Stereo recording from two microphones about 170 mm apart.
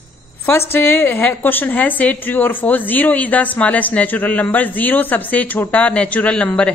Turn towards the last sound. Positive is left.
turn(degrees=5)  # may be behind; listen again after turning